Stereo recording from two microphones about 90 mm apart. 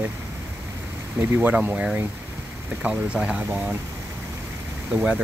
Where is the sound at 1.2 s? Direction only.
20° right (ahead or behind).